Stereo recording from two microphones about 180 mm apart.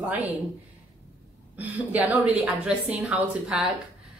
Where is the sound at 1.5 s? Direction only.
10° right (ahead or behind).